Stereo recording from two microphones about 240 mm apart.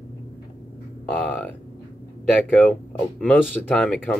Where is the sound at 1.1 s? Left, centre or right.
Centre.